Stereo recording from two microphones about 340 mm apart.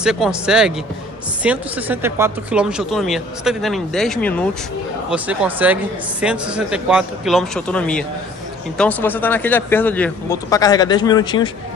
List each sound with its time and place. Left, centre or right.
0.0 s speech: centre